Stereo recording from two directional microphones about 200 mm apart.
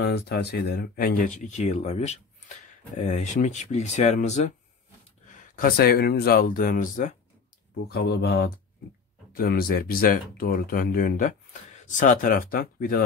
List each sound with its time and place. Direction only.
0.0 s speech: 50° left (ahead or behind)
7.8 s speech: 55° left (ahead or behind)